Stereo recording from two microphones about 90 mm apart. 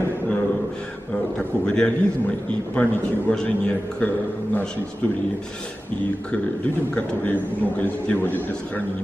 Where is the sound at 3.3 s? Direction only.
10° left (ahead or behind).